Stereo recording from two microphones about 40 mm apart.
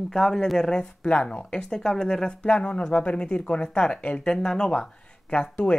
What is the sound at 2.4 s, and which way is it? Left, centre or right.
Speech, left.